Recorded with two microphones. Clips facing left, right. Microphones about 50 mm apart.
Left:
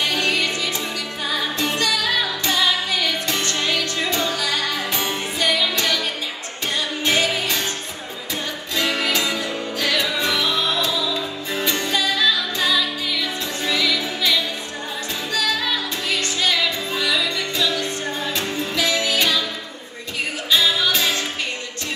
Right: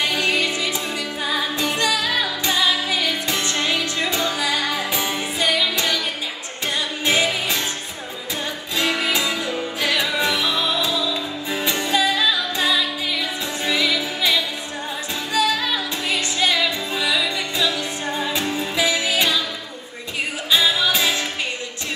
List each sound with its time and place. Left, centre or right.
0.0 s music: centre
7.1 s music: centre
9.0 s music: centre
20.5 s music: centre